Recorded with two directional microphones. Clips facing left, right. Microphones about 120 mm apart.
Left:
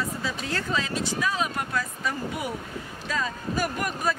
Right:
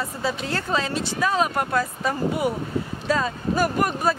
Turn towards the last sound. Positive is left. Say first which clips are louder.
# right 6 dB
turn(degrees=-35)  # may be behind; listen again after turning